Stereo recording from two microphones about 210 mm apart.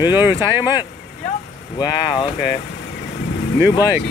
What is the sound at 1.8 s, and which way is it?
Speech, 20° left (ahead or behind).